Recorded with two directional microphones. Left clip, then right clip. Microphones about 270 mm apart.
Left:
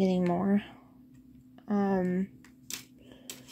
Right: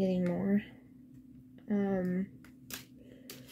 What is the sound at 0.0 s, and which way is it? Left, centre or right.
Speech, left.